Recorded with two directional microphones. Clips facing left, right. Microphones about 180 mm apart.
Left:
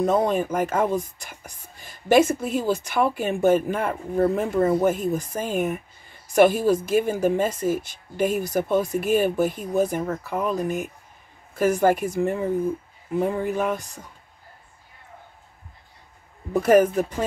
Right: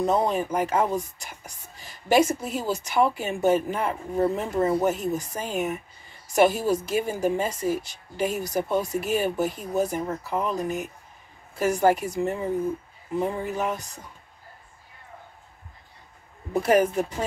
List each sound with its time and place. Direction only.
0.0 s a woman's voice: 55° left (ahead or behind)
11.5 s a woman's voice: 50° left (ahead or behind)
16.6 s a woman's voice: 45° left (ahead or behind)